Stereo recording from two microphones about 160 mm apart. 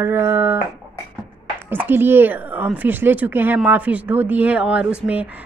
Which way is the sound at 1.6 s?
10° right (ahead or behind).